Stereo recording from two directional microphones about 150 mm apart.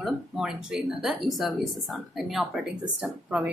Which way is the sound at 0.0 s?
5° right (ahead or behind).